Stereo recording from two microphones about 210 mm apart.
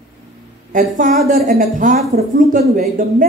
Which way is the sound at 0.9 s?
40° right (ahead or behind).